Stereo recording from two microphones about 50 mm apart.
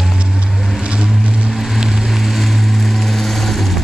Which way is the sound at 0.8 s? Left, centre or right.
Right.